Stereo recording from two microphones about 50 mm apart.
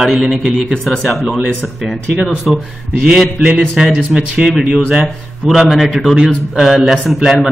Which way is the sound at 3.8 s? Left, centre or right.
Centre.